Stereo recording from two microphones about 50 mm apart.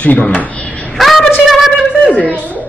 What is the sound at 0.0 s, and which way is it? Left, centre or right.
Speech, left.